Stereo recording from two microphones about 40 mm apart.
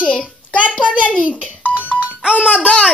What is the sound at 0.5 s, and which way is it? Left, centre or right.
Speech, left.